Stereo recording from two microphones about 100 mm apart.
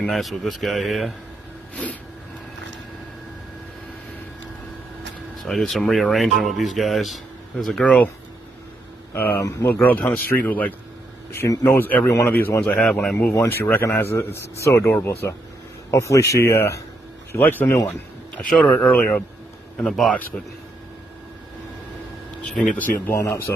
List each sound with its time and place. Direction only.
0.1 s speech: centre (ahead or behind)
5.4 s speech: 5° left (ahead or behind)
9.1 s speech: 20° left (ahead or behind)
9.4 s speech: 30° left (ahead or behind)
9.7 s speech: 20° left (ahead or behind)
11.3 s speech: 35° left (ahead or behind)
11.6 s a man's voice: 20° left (ahead or behind)
12.6 s speech: 10° left (ahead or behind)
13.3 s a man's voice: 25° left (ahead or behind)
18.5 s speech: 15° left (ahead or behind)
22.8 s speech: 15° left (ahead or behind)
23.1 s a man's voice: 25° left (ahead or behind)